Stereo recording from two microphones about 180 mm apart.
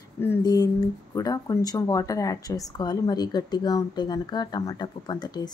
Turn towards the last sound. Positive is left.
turn(degrees=25)  # may be behind; listen again after turning